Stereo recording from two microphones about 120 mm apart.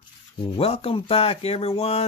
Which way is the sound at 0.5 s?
55° left (ahead or behind).